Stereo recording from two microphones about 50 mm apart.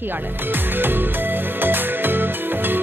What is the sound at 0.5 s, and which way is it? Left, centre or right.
Music, right.